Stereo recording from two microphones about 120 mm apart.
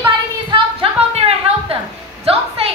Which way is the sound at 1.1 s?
55° right (ahead or behind).